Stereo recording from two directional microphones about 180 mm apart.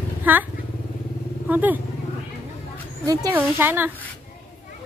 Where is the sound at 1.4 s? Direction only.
10° right (ahead or behind).